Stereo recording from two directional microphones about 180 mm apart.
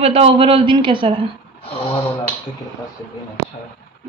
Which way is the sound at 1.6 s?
30° left (ahead or behind).